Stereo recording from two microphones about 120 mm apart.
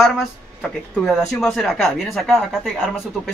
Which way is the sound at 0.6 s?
Centre (ahead or behind).